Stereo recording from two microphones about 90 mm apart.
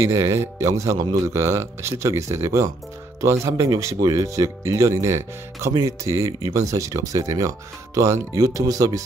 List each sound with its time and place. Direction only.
0.0 s speech: 30° right (ahead or behind)